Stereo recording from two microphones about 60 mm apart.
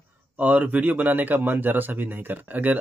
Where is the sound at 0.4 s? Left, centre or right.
Right.